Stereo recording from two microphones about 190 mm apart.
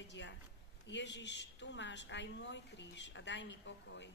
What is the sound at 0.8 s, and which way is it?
A woman's voice, 70° left (ahead or behind).